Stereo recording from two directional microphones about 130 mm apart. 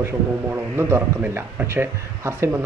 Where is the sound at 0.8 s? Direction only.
20° right (ahead or behind).